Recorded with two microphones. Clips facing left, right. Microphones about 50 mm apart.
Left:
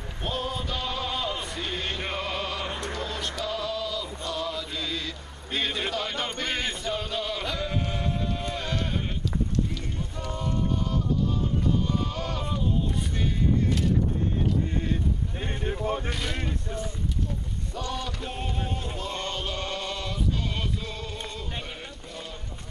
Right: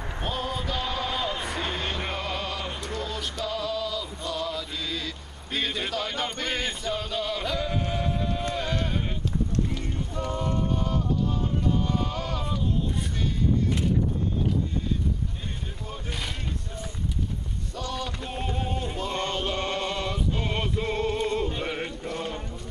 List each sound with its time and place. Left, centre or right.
0.2 s a sound: centre
1.6 s music: centre
4.3 s chant: centre
10.6 s music: centre
11.7 s sheep: centre
15.6 s vehicle: left
16.1 s vehicle: centre
17.7 s a sound: centre
18.6 s male singing: centre
20.4 s music: right
21.6 s a sound: right